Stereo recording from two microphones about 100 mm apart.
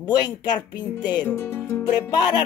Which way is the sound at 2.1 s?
40° left (ahead or behind).